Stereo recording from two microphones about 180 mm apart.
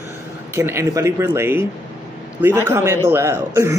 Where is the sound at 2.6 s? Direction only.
15° right (ahead or behind).